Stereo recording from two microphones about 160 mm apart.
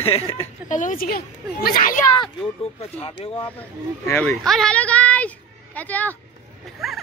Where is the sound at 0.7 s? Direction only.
55° left (ahead or behind).